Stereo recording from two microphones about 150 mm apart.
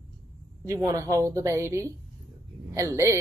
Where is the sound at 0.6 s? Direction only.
20° right (ahead or behind).